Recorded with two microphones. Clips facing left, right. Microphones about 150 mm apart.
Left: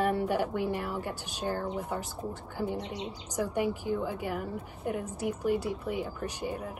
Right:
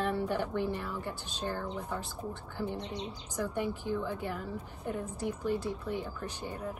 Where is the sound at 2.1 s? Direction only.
40° left (ahead or behind).